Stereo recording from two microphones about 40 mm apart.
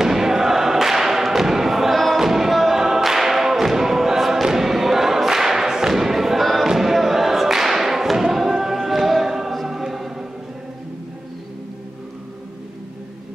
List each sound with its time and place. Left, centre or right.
0.0 s choir: centre
2.1 s music: centre